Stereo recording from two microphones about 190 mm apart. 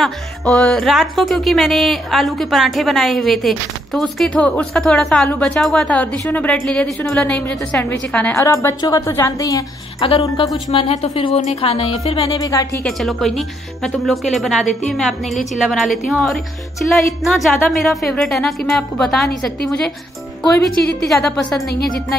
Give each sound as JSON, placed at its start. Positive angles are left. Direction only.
{"t": 0.0, "sound": "speech", "side_deg": 0}
{"t": 8.5, "sound": "a woman's voice", "side_deg": 15}
{"t": 10.7, "sound": "a woman's voice", "side_deg": 30}
{"t": 12.8, "sound": "speech", "side_deg": 0}